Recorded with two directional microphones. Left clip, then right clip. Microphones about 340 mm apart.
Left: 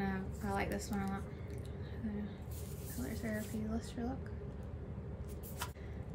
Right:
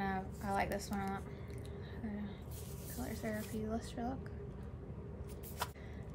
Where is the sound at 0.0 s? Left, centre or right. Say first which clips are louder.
Right 2 dB; centre.